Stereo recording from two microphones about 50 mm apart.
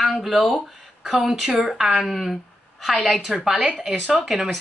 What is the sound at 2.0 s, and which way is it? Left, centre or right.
A woman's voice, centre.